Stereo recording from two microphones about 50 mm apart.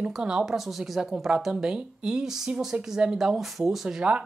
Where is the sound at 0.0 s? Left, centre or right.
Centre.